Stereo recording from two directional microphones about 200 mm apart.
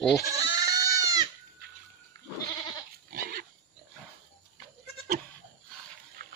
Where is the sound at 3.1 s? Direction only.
45° right (ahead or behind).